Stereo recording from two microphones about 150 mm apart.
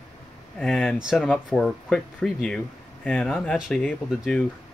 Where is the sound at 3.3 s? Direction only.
5° right (ahead or behind).